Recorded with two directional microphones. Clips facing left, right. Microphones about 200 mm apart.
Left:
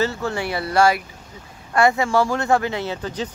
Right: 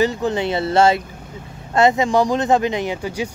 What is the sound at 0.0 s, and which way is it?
Speech, 15° right (ahead or behind).